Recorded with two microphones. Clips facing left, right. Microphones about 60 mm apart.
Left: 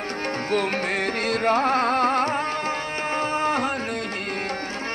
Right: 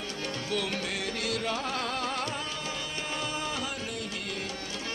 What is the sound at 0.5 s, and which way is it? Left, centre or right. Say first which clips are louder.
Music: left 9 dB; left.